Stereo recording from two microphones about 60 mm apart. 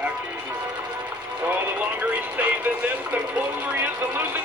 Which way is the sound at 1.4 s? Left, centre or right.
Right.